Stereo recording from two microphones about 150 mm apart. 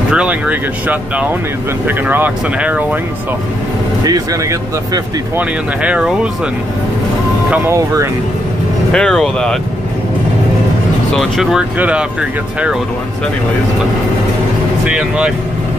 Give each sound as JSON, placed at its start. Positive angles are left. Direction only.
{"t": 0.1, "sound": "speech", "side_deg": -10}
{"t": 4.0, "sound": "speech", "side_deg": -25}
{"t": 5.4, "sound": "speech", "side_deg": -10}
{"t": 7.5, "sound": "speech", "side_deg": -15}
{"t": 8.9, "sound": "speech", "side_deg": 5}
{"t": 11.1, "sound": "speech", "side_deg": 0}
{"t": 14.9, "sound": "speech", "side_deg": -5}